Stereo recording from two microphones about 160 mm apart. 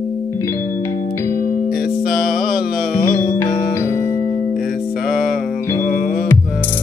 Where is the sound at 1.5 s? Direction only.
65° left (ahead or behind).